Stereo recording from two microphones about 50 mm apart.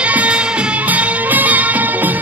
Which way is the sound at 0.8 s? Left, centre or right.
Right.